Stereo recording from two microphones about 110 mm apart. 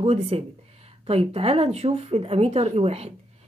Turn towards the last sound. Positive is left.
turn(degrees=-65)  # may be behind; listen again after turning